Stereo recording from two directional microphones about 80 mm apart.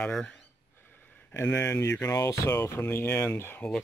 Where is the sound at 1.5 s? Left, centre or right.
Left.